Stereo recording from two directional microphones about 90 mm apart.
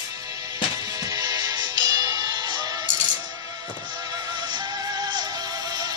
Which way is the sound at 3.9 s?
50° right (ahead or behind).